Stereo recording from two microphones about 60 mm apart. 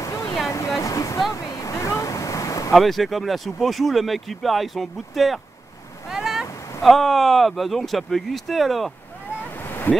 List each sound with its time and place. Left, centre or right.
0.0 s a sound: left
1.3 s waves: left
2.7 s speech: centre
6.0 s cat: centre
6.8 s speech: centre
9.6 s waves: left